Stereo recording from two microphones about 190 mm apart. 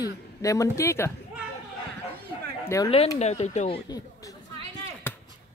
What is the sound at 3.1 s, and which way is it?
Speech, 35° left (ahead or behind).